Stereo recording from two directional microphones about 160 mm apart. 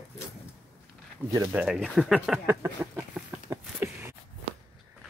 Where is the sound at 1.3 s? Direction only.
15° right (ahead or behind).